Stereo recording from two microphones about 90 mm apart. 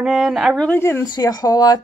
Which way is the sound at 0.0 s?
Centre (ahead or behind).